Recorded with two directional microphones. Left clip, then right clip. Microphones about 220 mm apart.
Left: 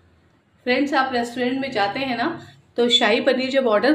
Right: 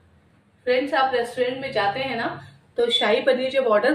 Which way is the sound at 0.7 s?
50° left (ahead or behind).